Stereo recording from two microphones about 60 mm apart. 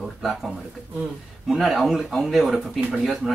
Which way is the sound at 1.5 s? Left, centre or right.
Centre.